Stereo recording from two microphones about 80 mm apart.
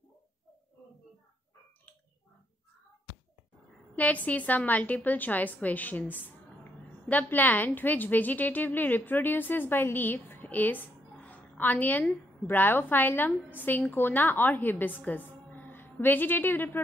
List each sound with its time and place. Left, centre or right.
3.9 s a woman's voice: centre